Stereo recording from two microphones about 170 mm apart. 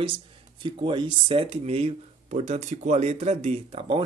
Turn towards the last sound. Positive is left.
turn(degrees=-30)  # may be behind; listen again after turning